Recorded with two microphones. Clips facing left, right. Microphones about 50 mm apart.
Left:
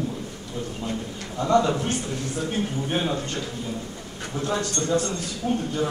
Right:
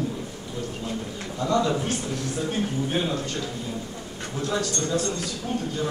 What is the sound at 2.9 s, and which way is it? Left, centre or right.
Speech, centre.